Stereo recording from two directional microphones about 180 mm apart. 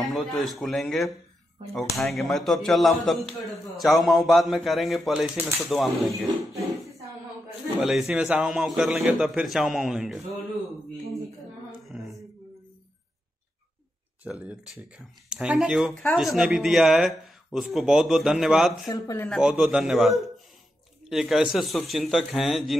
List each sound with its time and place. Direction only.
0.0 s speech: centre (ahead or behind)
7.7 s speech: centre (ahead or behind)
11.8 s mantra: centre (ahead or behind)
14.2 s speech: 5° right (ahead or behind)
18.9 s speech: 20° left (ahead or behind)
19.2 s speech: centre (ahead or behind)